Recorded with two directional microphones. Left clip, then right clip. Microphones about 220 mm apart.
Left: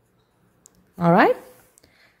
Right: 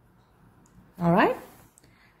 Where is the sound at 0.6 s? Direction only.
35° left (ahead or behind).